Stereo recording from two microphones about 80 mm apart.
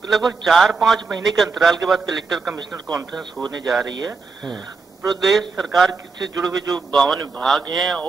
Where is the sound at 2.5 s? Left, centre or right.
Right.